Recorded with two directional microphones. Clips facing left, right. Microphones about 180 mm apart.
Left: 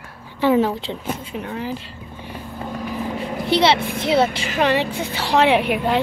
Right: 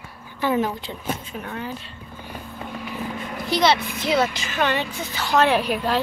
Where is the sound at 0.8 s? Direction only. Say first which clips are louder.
Left 2 dB; 25° left (ahead or behind).